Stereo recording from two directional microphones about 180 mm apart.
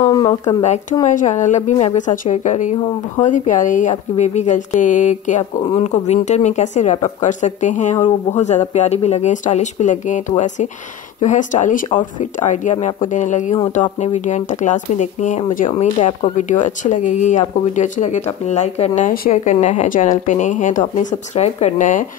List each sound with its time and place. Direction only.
0.0 s speech: 20° left (ahead or behind)
0.6 s speech: 40° left (ahead or behind)